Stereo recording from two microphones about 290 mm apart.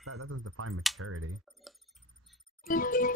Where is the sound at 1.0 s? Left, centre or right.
Right.